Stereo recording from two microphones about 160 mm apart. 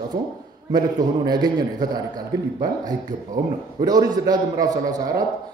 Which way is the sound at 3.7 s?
25° right (ahead or behind).